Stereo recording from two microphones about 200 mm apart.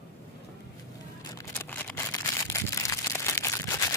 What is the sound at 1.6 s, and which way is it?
Crumpling, 10° left (ahead or behind).